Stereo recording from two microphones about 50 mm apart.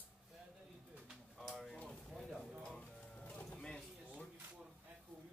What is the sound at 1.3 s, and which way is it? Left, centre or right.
Speech, centre.